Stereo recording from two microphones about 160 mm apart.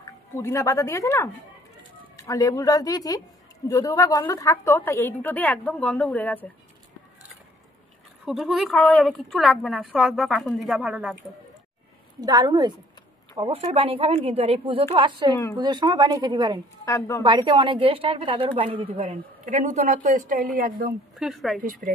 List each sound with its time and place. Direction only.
0.4 s a woman's voice: 20° left (ahead or behind)
8.3 s a woman's voice: centre (ahead or behind)
12.2 s a woman's voice: 25° right (ahead or behind)
16.8 s a woman's voice: 20° left (ahead or behind)
17.2 s a woman's voice: 30° right (ahead or behind)
19.4 s speech: 50° right (ahead or behind)
20.5 s a woman's voice: 70° right (ahead or behind)
21.2 s a woman's voice: centre (ahead or behind)
21.6 s speech: 60° right (ahead or behind)